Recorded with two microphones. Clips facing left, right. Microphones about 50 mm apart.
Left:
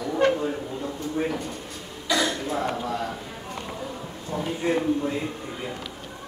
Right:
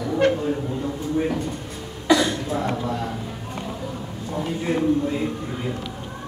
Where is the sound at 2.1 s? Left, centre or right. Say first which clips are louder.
Right 2 dB; centre.